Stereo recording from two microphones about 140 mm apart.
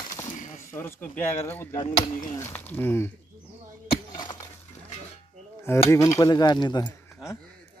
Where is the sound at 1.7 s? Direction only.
35° left (ahead or behind).